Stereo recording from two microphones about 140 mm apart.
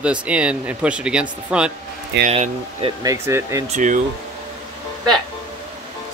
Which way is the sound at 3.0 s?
20° right (ahead or behind).